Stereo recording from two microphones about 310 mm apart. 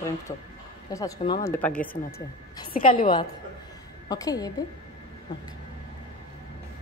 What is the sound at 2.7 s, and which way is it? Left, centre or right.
Speech, left.